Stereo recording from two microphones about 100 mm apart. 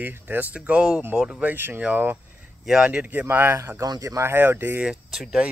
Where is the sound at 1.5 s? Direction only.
20° right (ahead or behind).